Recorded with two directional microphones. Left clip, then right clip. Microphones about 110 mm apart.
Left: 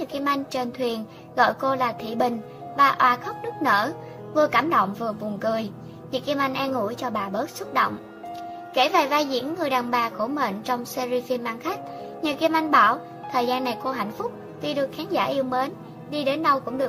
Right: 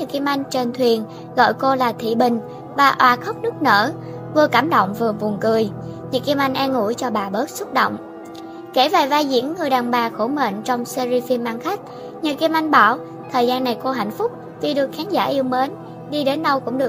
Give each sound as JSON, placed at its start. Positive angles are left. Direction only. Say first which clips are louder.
{"t": 0.0, "sound": "a child's voice", "louder": "right 4 dB", "side_deg": -75}
{"t": 6.1, "sound": "a woman's voice", "louder": "right 6 dB", "side_deg": -90}
{"t": 8.7, "sound": "a child's voice", "louder": "right 4 dB", "side_deg": -65}